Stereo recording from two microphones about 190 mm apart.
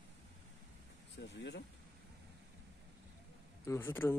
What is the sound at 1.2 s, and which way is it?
Vehicle, 65° left (ahead or behind).